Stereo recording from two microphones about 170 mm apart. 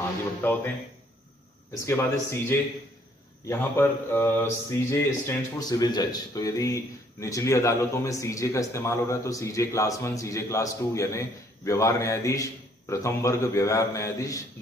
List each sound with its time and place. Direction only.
0.4 s a man's voice: 10° left (ahead or behind)
1.7 s a man's voice: 15° left (ahead or behind)